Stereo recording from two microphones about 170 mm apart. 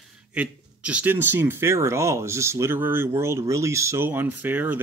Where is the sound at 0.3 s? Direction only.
5° right (ahead or behind).